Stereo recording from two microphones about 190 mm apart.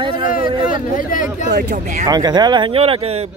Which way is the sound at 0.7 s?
45° left (ahead or behind).